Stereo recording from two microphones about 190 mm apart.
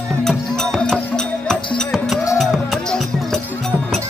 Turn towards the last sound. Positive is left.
turn(degrees=0)  # may be behind; listen again after turning